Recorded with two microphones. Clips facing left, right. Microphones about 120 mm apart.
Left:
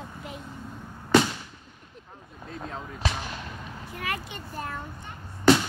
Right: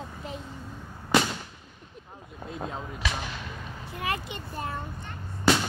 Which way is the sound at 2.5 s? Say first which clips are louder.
Right 2 dB; 15° right (ahead or behind).